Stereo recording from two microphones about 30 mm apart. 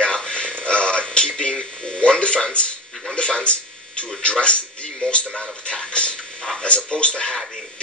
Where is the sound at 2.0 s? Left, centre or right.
Left.